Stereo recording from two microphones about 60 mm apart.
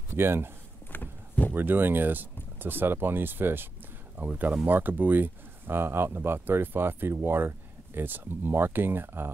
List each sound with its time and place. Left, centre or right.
0.1 s speech: right
0.9 s clip-clop: left
1.5 s speech: right